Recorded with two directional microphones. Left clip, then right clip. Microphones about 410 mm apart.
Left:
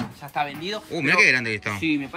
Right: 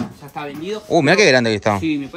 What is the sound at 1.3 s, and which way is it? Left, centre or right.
Speech, centre.